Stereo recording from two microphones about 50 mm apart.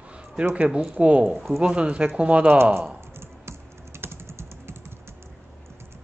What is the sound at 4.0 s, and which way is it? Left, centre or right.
Typing, right.